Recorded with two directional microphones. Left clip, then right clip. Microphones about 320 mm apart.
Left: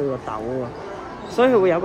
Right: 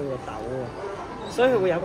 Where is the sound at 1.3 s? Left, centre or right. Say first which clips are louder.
Left 4 dB; left.